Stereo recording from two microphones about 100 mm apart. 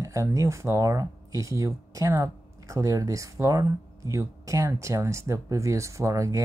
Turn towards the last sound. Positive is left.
turn(degrees=-30)  # may be behind; listen again after turning